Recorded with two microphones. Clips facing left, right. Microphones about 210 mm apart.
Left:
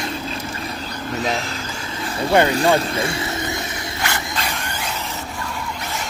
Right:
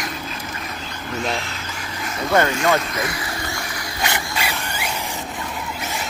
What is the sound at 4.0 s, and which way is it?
Mechanisms, 20° right (ahead or behind).